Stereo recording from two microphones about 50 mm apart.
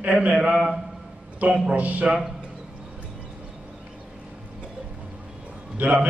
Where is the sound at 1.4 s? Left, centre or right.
Right.